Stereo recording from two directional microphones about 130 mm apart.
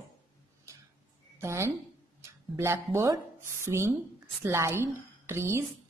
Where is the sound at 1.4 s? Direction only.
20° right (ahead or behind).